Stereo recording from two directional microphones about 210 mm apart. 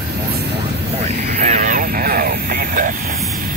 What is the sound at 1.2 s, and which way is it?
Vehicle, 35° right (ahead or behind).